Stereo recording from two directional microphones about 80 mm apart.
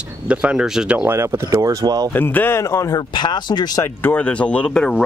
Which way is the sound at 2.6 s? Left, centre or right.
Left.